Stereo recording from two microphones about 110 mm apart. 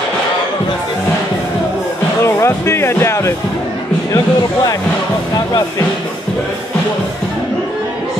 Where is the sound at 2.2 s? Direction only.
25° left (ahead or behind).